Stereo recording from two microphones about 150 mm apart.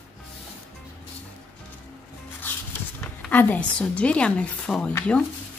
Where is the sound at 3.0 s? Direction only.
10° left (ahead or behind).